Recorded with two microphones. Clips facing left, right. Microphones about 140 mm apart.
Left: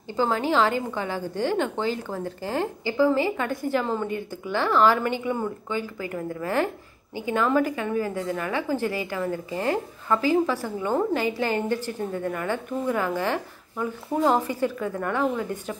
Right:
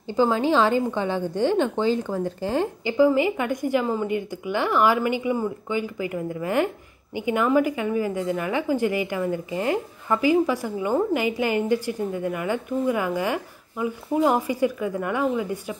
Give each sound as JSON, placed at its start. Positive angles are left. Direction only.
{"t": 0.1, "sound": "a woman's voice", "side_deg": -15}